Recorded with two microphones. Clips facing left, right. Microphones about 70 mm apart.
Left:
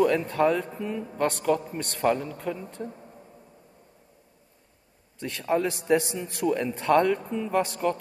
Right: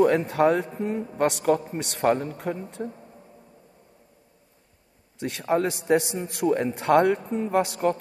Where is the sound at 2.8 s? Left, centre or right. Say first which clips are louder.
Right 3 dB; right.